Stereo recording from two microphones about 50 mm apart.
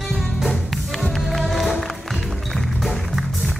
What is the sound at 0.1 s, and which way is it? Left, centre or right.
Music, centre.